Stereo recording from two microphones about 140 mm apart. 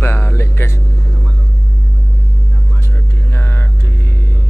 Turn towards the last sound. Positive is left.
turn(degrees=15)  # may be behind; listen again after turning